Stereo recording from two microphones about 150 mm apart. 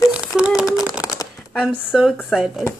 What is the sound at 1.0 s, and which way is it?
Shuffling cards, 20° left (ahead or behind).